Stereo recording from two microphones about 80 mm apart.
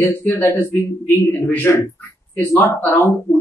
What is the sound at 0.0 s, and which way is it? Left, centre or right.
A man's voice, left.